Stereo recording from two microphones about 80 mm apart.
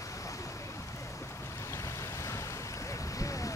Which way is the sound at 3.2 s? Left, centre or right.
Left.